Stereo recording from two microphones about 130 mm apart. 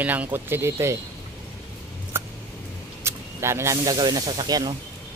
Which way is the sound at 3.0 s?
20° right (ahead or behind).